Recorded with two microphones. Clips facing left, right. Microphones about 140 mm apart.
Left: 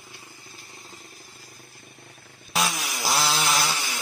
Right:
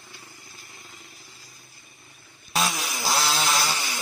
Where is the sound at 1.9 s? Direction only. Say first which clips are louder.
Left 5 dB; 75° left (ahead or behind).